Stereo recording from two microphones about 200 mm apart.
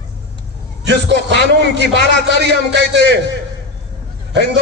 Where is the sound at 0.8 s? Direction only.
60° right (ahead or behind).